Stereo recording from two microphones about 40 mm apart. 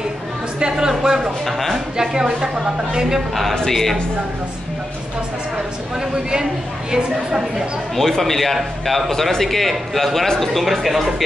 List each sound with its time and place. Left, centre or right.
0.6 s a sound: centre
1.4 s a man's voice: centre
2.0 s a woman's voice: centre
3.5 s a man's voice: centre
6.9 s a woman's voice: centre
7.9 s a man's voice: centre
10.5 s a man's voice: centre